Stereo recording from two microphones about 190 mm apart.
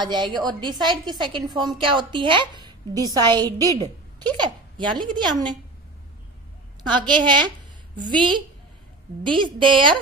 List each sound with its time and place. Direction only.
0.0 s a woman's voice: 25° right (ahead or behind)
6.8 s a woman's voice: 25° right (ahead or behind)